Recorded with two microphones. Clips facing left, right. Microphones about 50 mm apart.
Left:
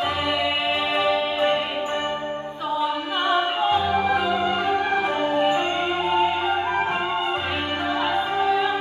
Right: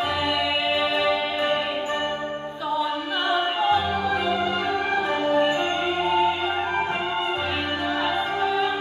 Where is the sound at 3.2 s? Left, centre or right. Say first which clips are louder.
Left 2 dB; left.